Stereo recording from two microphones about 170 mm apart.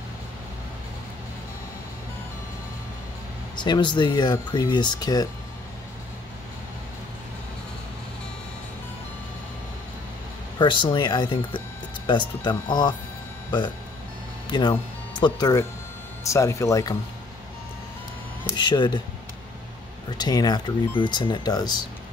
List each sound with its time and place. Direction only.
3.5 s speech: 25° left (ahead or behind)
10.6 s speech: 30° left (ahead or behind)
14.5 s speech: 25° left (ahead or behind)
18.6 s speech: 25° left (ahead or behind)
20.2 s speech: 25° left (ahead or behind)